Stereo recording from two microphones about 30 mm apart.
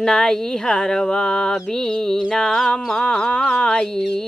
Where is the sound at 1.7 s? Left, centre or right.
Centre.